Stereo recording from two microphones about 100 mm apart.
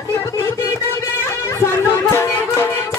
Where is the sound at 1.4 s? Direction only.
25° left (ahead or behind).